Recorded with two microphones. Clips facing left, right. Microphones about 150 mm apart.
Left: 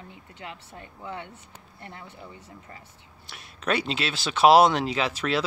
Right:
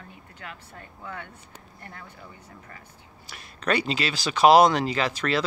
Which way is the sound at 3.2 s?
Centre (ahead or behind).